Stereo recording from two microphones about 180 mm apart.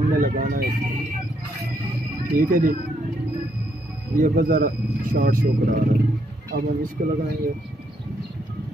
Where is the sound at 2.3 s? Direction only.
50° right (ahead or behind).